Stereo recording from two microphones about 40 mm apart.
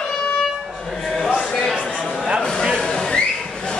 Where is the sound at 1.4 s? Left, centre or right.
Centre.